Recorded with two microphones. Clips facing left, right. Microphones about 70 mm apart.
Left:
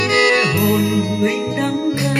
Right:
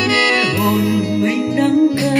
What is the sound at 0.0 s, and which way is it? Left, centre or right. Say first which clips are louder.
Music: left 1 dB; left.